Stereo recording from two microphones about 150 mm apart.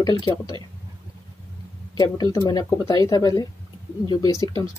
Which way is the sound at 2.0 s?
25° left (ahead or behind).